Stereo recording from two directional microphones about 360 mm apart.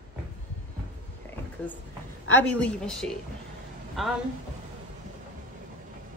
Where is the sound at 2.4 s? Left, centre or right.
Centre.